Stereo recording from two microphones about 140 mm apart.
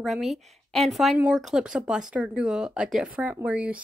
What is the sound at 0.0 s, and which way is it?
A woman's voice, centre (ahead or behind).